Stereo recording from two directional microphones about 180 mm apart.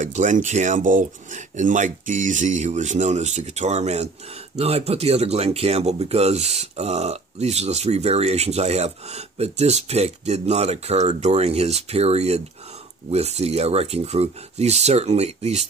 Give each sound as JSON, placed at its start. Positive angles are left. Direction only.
{"t": 0.0, "sound": "speech", "side_deg": -45}